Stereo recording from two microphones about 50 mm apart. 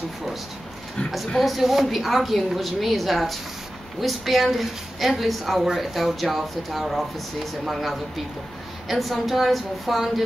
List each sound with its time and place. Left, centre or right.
1.3 s a woman's voice: centre